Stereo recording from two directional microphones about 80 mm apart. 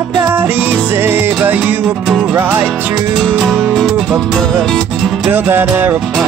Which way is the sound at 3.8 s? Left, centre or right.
Centre.